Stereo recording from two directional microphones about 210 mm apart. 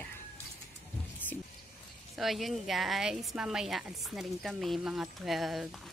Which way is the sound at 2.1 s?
Centre (ahead or behind).